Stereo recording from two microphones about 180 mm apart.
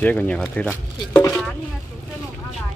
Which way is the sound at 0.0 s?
10° left (ahead or behind).